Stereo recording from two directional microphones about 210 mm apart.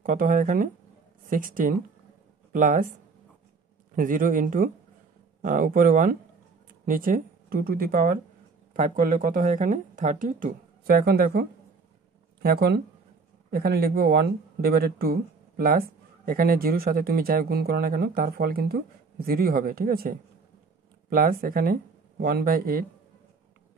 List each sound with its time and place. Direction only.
0.0 s speech: 40° right (ahead or behind)
3.9 s speech: 40° right (ahead or behind)